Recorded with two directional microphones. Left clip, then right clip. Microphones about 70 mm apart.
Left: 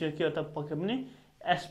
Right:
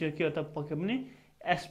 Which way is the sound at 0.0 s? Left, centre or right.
Right.